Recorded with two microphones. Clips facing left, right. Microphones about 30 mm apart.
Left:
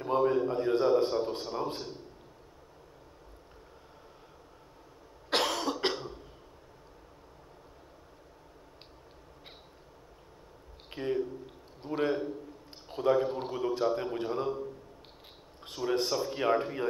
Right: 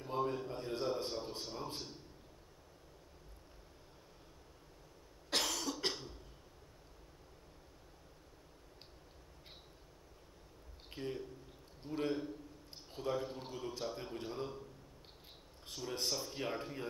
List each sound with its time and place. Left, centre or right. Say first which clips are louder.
0.0 s a sound: left 11 dB; left
1.4 s speech: left 10 dB; left
5.3 s cough: left 8 dB; left
10.9 s a sound: left 11 dB; left
12.8 s a man's voice: left 12 dB; left
15.7 s speech: left 10 dB; left